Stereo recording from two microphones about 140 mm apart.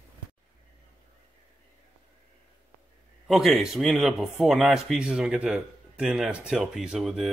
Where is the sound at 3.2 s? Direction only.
Centre (ahead or behind).